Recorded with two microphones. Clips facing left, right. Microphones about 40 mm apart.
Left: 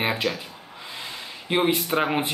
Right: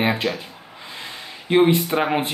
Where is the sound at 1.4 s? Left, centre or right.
Centre.